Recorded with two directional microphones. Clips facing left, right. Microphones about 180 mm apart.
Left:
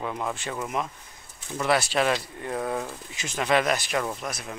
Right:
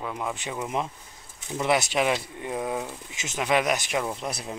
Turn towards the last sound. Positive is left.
turn(degrees=-30)  # may be behind; listen again after turning